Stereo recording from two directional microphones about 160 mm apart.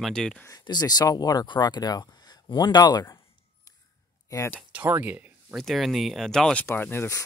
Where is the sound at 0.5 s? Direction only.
25° left (ahead or behind).